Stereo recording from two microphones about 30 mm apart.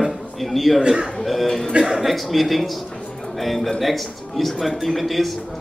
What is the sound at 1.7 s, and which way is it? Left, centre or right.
Speech, right.